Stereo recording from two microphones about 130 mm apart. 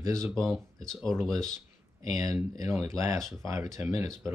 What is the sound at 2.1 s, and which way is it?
Speech, 25° right (ahead or behind).